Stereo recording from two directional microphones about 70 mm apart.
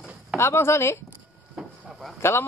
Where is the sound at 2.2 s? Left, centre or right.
Left.